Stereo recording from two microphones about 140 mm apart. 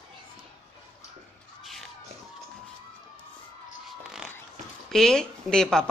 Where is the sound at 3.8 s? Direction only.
5° right (ahead or behind).